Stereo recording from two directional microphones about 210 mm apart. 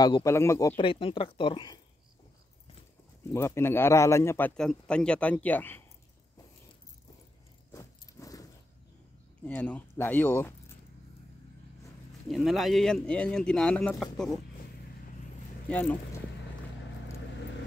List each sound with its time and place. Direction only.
0.0 s a man's voice: 15° left (ahead or behind)
0.7 s speech: 25° left (ahead or behind)
3.3 s a man's voice: 10° left (ahead or behind)
7.7 s a sound: 15° left (ahead or behind)
9.5 s a man's voice: 10° left (ahead or behind)
12.3 s speech: centre (ahead or behind)
15.7 s a man's voice: 5° left (ahead or behind)